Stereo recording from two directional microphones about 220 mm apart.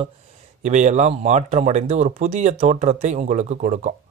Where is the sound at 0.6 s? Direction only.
35° right (ahead or behind).